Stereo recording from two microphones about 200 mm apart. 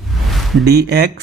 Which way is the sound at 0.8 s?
50° right (ahead or behind).